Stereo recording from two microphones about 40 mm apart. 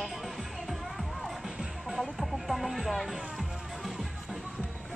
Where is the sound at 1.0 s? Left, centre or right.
Centre.